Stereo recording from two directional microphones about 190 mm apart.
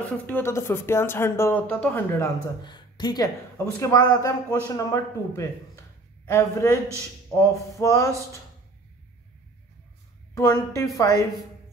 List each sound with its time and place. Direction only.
0.0 s speech: 10° left (ahead or behind)
10.3 s a woman's voice: 15° left (ahead or behind)